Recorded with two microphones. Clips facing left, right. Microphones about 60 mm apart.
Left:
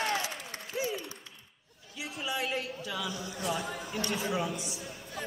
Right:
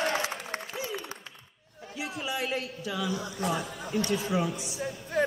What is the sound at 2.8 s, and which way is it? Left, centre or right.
Speech, right.